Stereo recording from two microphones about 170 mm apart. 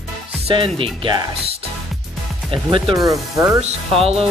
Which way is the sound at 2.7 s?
25° right (ahead or behind).